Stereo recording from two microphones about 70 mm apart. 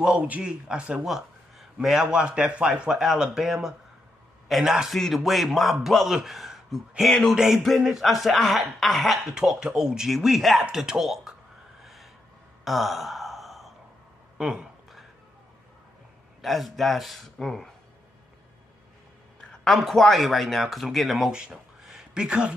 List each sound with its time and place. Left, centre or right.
0.3 s speech: centre
2.9 s a man's voice: centre
7.3 s a man's voice: centre
11.8 s vehicle: centre
12.6 s gasp: centre
14.4 s a sound: centre
16.3 s a man's voice: centre
19.6 s a man's voice: centre
21.3 s a sound: centre